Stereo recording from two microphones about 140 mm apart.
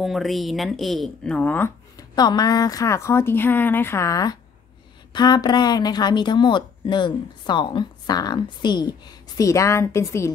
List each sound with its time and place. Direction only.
0.0 s speech: centre (ahead or behind)
2.0 s a woman's voice: 30° left (ahead or behind)